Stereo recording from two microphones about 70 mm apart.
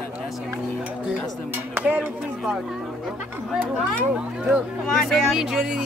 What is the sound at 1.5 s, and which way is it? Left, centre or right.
Music, right.